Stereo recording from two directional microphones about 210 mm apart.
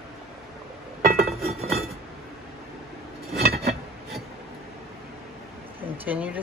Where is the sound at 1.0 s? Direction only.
45° right (ahead or behind).